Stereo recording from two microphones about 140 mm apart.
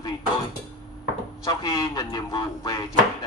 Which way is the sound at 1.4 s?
35° left (ahead or behind).